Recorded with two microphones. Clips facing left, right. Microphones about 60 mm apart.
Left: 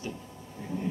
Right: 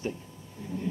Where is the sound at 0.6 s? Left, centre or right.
Left.